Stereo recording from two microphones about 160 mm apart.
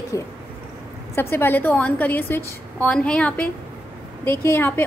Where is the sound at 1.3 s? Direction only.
15° left (ahead or behind).